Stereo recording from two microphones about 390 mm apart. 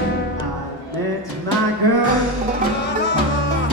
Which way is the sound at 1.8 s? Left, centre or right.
Right.